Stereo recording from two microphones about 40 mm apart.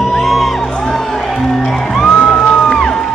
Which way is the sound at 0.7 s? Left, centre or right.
Centre.